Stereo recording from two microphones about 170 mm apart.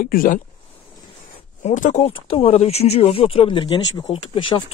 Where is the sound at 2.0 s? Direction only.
30° left (ahead or behind).